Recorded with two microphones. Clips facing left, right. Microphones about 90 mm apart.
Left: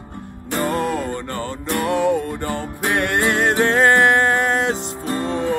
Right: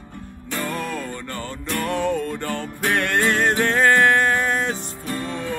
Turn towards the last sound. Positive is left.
turn(degrees=20)  # may be behind; listen again after turning